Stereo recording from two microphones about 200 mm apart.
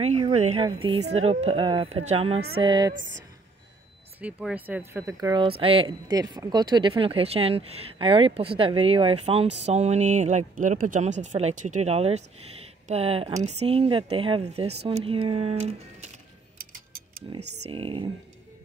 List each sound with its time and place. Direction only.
0.0 s speech: 35° right (ahead or behind)
2.9 s speech: 65° right (ahead or behind)
4.2 s speech: 5° right (ahead or behind); by 15.7 s 30° right (ahead or behind)
17.6 s speech: 25° right (ahead or behind)